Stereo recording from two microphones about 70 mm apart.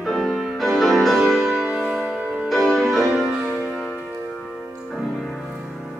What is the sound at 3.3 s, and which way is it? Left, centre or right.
Music, right.